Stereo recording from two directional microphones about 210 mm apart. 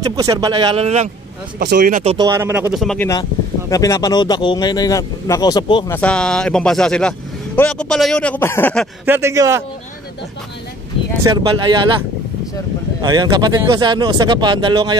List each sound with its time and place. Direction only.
0.0 s speech: 15° right (ahead or behind); by 1.1 s 30° right (ahead or behind)
1.6 s speech: 45° right (ahead or behind)
2.1 s speech: 15° right (ahead or behind); by 3.1 s centre (ahead or behind)
3.7 s speech: 15° left (ahead or behind)
5.9 s speech: 5° left (ahead or behind)
9.0 s speech: 10° right (ahead or behind)
11.2 s speech: 20° right (ahead or behind)
13.0 s speech: 20° right (ahead or behind)